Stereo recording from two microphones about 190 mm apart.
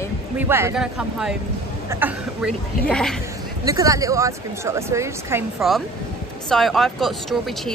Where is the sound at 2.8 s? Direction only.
5° left (ahead or behind).